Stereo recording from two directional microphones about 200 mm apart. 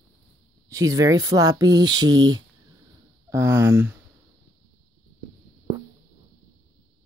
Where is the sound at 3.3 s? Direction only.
15° right (ahead or behind).